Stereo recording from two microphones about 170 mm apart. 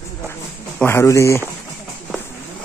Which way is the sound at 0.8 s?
15° left (ahead or behind).